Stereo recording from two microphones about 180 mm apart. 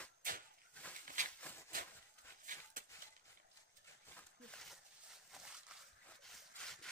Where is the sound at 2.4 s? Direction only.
45° right (ahead or behind).